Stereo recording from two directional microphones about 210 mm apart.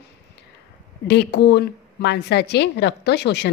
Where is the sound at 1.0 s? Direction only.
55° left (ahead or behind).